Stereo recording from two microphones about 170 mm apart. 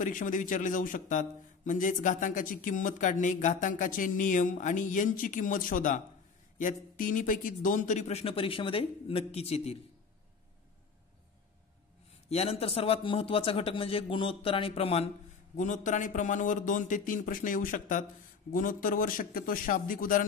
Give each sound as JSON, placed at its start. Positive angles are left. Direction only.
{"t": 0.0, "sound": "a man's voice", "side_deg": 50}
{"t": 12.3, "sound": "speech", "side_deg": 35}
{"t": 15.5, "sound": "a man's voice", "side_deg": 45}